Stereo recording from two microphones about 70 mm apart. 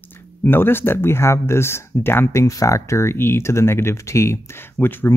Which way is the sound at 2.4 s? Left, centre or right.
Left.